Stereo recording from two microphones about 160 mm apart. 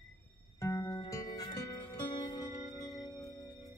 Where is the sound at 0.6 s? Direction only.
20° left (ahead or behind).